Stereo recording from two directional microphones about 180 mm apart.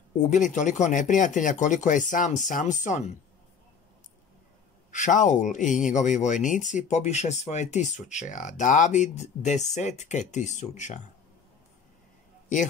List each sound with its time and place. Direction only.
0.3 s speech: 45° left (ahead or behind)
4.9 s speech: 45° left (ahead or behind)